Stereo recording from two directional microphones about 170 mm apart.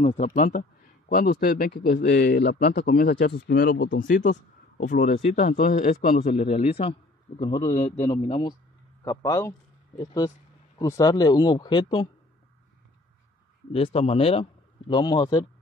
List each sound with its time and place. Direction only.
0.0 s speech: 40° left (ahead or behind)
6.4 s a man's voice: 40° left (ahead or behind); by 9.6 s 20° left (ahead or behind)
10.8 s speech: 20° left (ahead or behind)
13.7 s speech: 35° left (ahead or behind)